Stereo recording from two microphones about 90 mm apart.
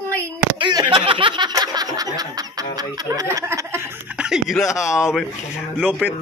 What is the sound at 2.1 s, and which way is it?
Snicker, 45° right (ahead or behind).